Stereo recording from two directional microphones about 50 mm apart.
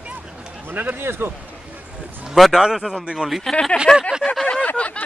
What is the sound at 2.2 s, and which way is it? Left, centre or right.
A man's voice, centre.